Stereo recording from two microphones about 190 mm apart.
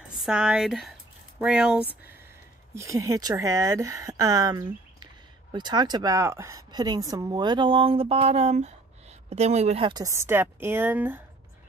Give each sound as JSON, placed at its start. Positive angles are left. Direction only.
{"t": 0.1, "sound": "speech", "side_deg": -5}
{"t": 2.7, "sound": "a woman's voice", "side_deg": -15}